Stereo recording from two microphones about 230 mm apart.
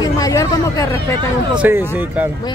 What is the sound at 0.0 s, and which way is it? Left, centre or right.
Chatter, centre.